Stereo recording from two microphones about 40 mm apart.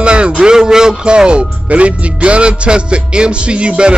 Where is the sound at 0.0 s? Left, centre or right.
Right.